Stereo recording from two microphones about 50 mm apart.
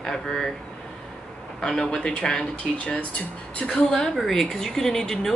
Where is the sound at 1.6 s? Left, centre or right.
Centre.